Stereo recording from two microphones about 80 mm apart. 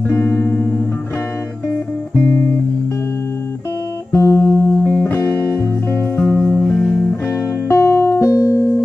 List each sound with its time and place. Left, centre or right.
0.1 s music: left
4.2 s music: left
6.7 s music: centre
7.6 s music: left